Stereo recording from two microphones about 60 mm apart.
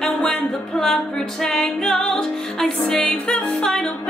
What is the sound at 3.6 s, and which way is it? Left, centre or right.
Music, centre.